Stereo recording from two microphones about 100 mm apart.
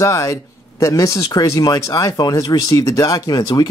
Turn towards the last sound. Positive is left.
turn(degrees=45)  # may be behind; listen again after turning